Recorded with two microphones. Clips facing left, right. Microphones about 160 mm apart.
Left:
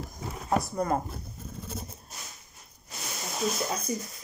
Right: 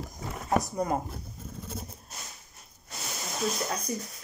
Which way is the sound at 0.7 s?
15° right (ahead or behind).